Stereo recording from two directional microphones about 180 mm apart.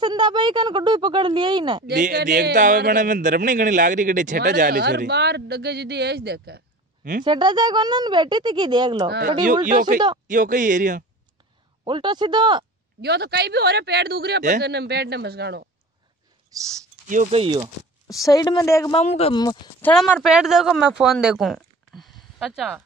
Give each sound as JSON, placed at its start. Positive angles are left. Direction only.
{"t": 0.0, "sound": "speech", "side_deg": -25}
{"t": 2.2, "sound": "a man's voice", "side_deg": -50}
{"t": 4.4, "sound": "speech", "side_deg": -55}
{"t": 7.2, "sound": "speech", "side_deg": -25}
{"t": 9.7, "sound": "a man's voice", "side_deg": -45}
{"t": 11.8, "sound": "speech", "side_deg": -25}
{"t": 13.0, "sound": "a man's voice", "side_deg": -65}
{"t": 16.5, "sound": "speech", "side_deg": -20}
{"t": 17.1, "sound": "a man's voice", "side_deg": -45}
{"t": 17.4, "sound": "speech", "side_deg": -30}
{"t": 18.0, "sound": "a woman's voice", "side_deg": 20}
{"t": 18.9, "sound": "speech", "side_deg": 35}
{"t": 19.4, "sound": "a woman's voice", "side_deg": 25}
{"t": 19.8, "sound": "speech", "side_deg": 5}